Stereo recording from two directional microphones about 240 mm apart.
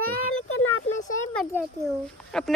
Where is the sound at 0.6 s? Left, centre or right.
Left.